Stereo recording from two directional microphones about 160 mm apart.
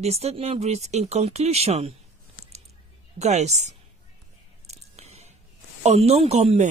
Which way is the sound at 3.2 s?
45° right (ahead or behind).